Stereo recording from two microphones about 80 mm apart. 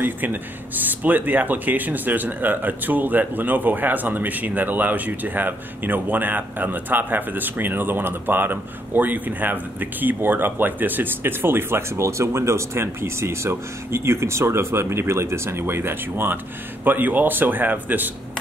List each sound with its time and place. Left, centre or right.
0.0 s speech: right